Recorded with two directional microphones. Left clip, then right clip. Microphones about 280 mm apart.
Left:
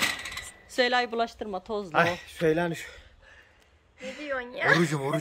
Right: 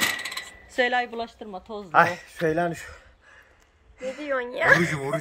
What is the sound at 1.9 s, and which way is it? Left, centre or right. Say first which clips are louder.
Speech: right 6 dB; centre.